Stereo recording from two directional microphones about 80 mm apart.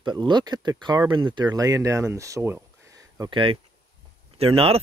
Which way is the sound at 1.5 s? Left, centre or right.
Right.